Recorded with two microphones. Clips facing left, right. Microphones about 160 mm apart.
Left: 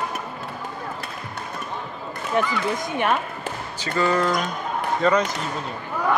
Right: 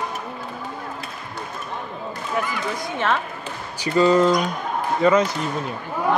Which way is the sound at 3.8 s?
20° right (ahead or behind).